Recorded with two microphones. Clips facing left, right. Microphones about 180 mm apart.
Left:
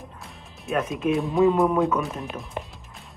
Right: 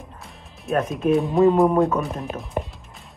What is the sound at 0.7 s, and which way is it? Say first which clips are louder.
Speech: right 4 dB; centre (ahead or behind).